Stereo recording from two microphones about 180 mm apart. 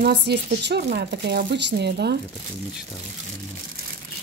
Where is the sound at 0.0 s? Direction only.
65° right (ahead or behind).